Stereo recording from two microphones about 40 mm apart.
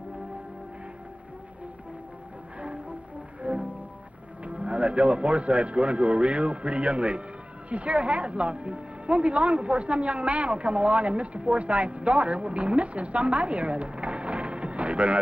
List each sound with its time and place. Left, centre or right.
3.4 s music: right
4.5 s speech: right